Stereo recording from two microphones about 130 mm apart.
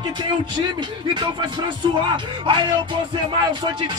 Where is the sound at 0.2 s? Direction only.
35° right (ahead or behind).